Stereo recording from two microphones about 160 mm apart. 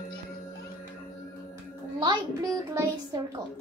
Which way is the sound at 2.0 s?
25° right (ahead or behind).